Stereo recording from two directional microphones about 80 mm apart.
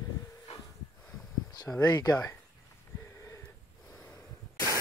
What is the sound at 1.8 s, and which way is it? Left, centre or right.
Speech, left.